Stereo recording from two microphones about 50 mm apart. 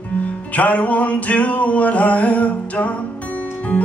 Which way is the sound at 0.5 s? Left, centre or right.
Left.